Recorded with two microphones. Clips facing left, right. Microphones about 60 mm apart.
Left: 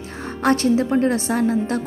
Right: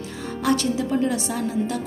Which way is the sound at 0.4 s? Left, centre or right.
Left.